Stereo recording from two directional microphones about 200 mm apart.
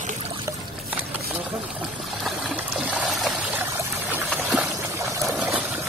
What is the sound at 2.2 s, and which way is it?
Pour, 5° right (ahead or behind).